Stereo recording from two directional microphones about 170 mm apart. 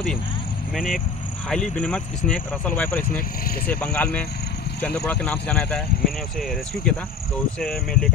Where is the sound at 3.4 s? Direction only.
60° left (ahead or behind).